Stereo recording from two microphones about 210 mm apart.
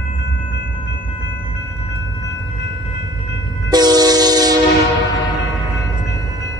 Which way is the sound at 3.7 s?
20° right (ahead or behind).